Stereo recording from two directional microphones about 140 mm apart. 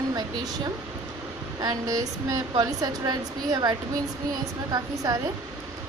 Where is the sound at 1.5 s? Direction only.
25° right (ahead or behind).